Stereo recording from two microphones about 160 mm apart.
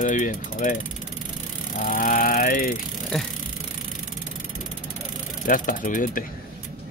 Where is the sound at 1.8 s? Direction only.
60° left (ahead or behind).